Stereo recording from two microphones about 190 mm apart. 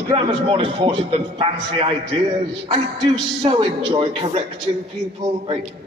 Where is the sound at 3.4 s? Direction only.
30° right (ahead or behind).